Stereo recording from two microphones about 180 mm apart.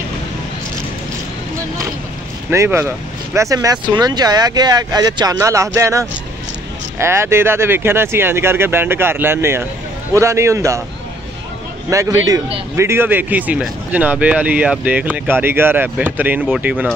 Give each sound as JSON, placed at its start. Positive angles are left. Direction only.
{"t": 2.5, "sound": "speech", "side_deg": -15}
{"t": 11.9, "sound": "speech", "side_deg": -15}